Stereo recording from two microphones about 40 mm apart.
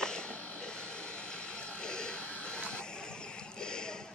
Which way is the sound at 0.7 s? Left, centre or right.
Left.